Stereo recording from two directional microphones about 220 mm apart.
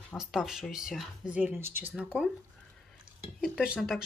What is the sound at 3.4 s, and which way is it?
Speech, centre (ahead or behind).